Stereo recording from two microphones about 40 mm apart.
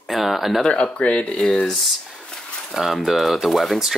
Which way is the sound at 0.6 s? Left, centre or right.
Left.